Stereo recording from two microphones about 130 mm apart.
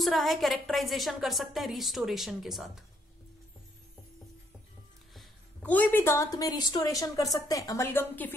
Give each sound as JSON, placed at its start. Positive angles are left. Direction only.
{"t": 0.0, "sound": "a woman's voice", "side_deg": 0}
{"t": 5.6, "sound": "a woman's voice", "side_deg": 10}